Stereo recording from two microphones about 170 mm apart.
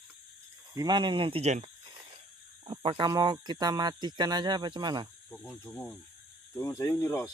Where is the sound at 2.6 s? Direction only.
30° right (ahead or behind).